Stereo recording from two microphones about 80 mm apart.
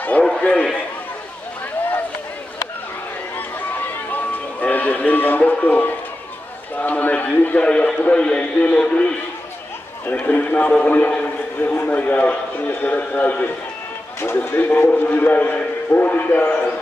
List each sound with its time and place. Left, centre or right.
0.4 s a man's voice: centre
4.1 s music: centre
6.8 s a man's voice: centre